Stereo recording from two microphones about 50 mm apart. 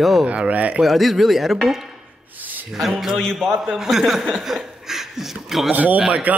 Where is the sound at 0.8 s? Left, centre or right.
Centre.